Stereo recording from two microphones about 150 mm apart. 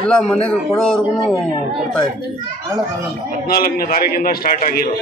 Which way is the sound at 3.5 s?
80° left.